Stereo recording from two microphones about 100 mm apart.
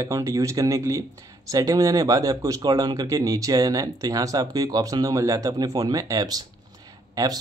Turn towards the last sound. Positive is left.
turn(degrees=-40)  # may be behind; listen again after turning